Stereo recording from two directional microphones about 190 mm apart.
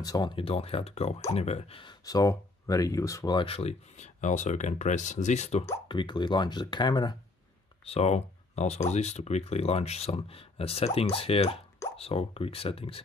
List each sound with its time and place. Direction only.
0.0 s speech: 20° left (ahead or behind)
5.9 s speech: 25° left (ahead or behind)
7.8 s speech: 35° left (ahead or behind)